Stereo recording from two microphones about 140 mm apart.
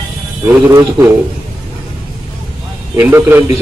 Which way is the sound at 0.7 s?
25° right (ahead or behind).